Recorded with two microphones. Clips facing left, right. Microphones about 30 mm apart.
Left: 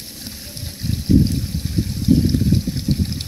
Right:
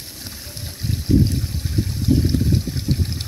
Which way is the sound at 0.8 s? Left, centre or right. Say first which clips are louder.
Left 2 dB; left.